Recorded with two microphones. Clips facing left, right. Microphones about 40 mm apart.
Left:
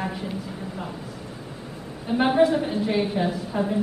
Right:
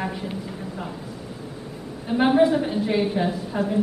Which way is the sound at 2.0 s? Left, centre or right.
Centre.